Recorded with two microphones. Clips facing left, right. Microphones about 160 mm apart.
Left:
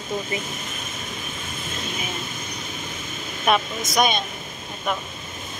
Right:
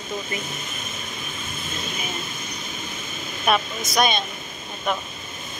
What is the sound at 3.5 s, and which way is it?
Speech, 20° left (ahead or behind).